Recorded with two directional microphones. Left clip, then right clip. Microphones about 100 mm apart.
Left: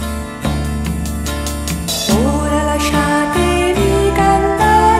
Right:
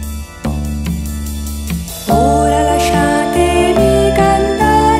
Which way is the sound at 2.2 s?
15° right (ahead or behind).